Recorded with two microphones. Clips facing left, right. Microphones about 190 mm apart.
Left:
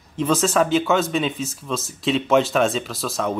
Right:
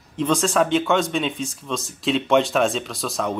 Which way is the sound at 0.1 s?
5° left (ahead or behind).